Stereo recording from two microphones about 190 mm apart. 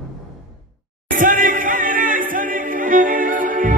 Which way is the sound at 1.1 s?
45° right (ahead or behind).